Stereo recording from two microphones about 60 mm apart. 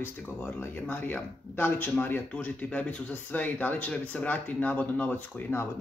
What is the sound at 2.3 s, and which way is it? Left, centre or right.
Speech, left.